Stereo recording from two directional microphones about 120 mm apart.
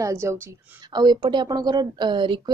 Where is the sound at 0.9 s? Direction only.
35° right (ahead or behind).